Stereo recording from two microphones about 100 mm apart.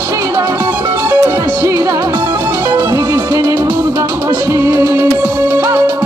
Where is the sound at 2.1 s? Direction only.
45° right (ahead or behind).